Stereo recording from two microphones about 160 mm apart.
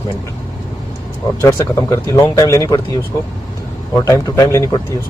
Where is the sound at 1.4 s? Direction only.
15° left (ahead or behind).